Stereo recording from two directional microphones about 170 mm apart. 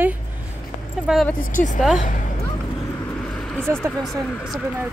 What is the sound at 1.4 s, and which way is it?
Speech, 50° left (ahead or behind).